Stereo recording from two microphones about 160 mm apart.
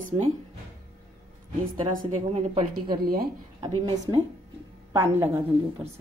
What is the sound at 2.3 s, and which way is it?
A woman's voice, 30° right (ahead or behind).